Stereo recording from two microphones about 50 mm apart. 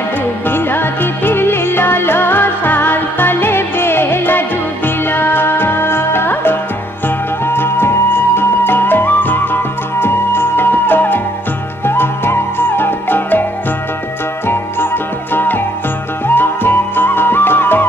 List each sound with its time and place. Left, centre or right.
0.5 s music: left
11.8 s music: left
15.3 s music: left